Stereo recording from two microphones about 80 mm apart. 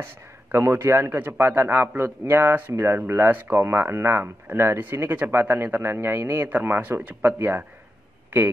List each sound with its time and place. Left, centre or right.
0.0 s a man's voice: right